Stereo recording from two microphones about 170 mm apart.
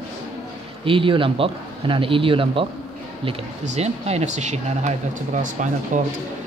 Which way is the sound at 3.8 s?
40° right (ahead or behind).